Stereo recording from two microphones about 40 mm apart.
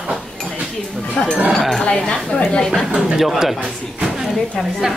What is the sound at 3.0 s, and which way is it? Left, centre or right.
Speech, centre.